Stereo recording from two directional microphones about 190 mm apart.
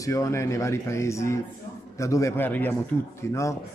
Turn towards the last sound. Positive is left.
turn(degrees=15)  # may be behind; listen again after turning